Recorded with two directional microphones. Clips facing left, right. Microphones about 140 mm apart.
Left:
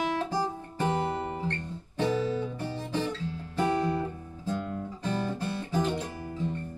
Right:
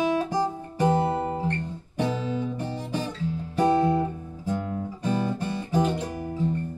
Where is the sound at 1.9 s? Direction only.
15° right (ahead or behind).